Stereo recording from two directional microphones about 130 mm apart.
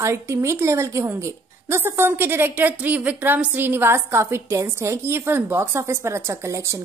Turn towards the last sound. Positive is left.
turn(degrees=-20)  # may be behind; listen again after turning